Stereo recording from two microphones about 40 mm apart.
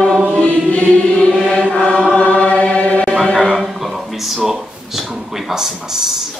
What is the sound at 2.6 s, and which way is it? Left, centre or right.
Chant, left.